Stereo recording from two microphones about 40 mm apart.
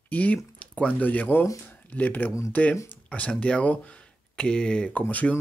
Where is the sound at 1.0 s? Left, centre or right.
Left.